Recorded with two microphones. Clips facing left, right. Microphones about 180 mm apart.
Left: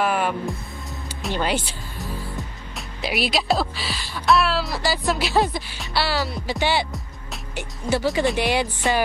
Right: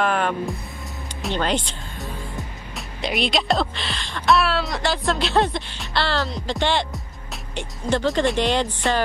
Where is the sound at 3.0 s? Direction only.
5° left (ahead or behind).